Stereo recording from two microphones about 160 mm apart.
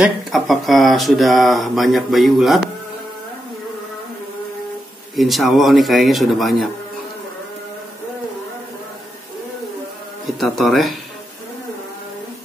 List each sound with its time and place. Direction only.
0.0 s speech: centre (ahead or behind)
5.1 s speech: centre (ahead or behind)
10.4 s speech: centre (ahead or behind)